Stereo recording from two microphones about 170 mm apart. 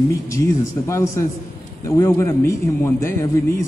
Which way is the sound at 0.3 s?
15° left (ahead or behind).